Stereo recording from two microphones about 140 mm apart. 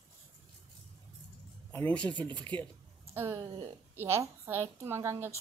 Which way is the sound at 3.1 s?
20° right (ahead or behind).